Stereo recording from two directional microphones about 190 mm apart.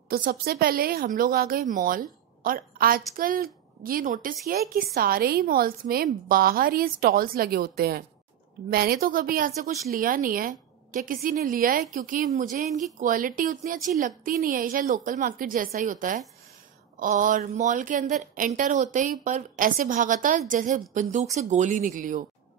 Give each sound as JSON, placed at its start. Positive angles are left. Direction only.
{"t": 0.1, "sound": "a woman's voice", "side_deg": -50}